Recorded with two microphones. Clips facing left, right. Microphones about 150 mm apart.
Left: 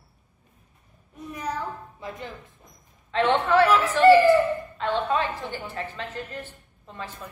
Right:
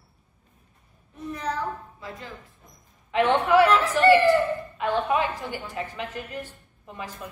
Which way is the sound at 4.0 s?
10° right (ahead or behind).